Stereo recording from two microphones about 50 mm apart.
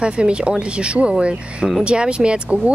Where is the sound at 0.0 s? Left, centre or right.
Centre.